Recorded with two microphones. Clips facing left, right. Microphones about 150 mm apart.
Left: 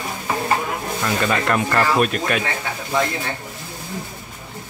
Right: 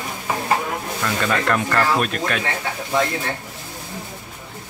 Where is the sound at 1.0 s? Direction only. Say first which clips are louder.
Left 1 dB; 10° left (ahead or behind).